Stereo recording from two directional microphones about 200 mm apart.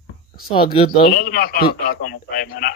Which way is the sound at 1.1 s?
45° left (ahead or behind).